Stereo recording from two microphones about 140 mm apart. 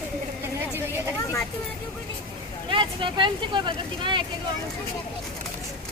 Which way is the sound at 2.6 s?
35° right (ahead or behind).